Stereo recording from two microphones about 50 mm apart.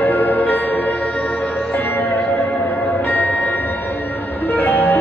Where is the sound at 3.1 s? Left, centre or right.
Left.